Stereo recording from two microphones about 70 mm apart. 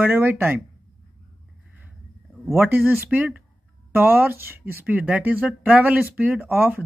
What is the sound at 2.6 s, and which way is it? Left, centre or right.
Speech, right.